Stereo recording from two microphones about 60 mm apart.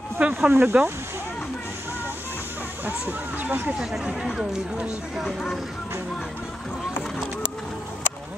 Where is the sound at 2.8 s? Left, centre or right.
Right.